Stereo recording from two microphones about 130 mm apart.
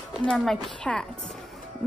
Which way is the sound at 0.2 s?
5° left (ahead or behind).